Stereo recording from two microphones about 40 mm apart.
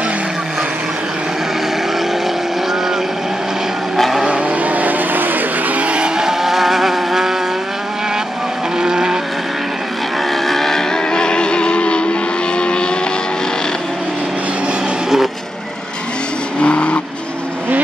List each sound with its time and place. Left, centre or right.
3.9 s vehicle: centre
4.3 s vehicle: right
5.8 s vehicle: right; by 7.3 s centre
8.7 s vehicle: centre
10.3 s vehicle: centre; by 12.9 s left
16.5 s vehicle: left